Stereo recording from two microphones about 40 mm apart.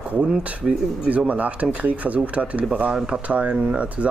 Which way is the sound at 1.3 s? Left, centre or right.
Right.